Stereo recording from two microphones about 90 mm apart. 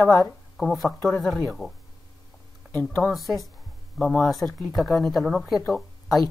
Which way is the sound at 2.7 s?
20° left (ahead or behind).